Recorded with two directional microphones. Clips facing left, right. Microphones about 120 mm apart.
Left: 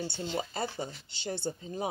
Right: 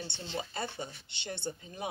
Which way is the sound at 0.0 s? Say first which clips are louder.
Left 5 dB; 5° left (ahead or behind).